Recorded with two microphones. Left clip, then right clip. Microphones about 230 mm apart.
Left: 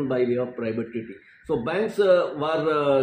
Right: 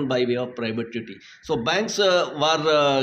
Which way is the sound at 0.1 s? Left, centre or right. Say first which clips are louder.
Even; right.